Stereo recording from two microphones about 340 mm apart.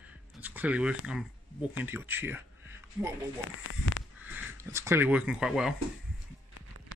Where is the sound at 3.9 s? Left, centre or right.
Left.